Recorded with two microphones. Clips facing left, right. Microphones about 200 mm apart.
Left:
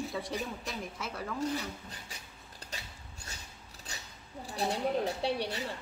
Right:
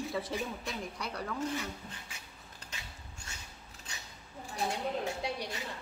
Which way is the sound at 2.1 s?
35° left (ahead or behind).